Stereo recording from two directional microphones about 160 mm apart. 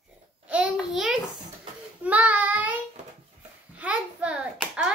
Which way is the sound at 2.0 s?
10° right (ahead or behind).